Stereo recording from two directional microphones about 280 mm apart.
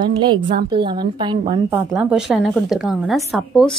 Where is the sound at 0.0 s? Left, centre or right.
Centre.